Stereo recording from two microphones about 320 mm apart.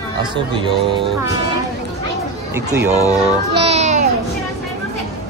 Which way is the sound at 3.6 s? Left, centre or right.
Right.